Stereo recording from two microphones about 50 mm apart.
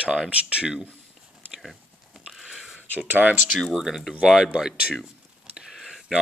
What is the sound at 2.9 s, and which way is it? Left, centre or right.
Speech, right.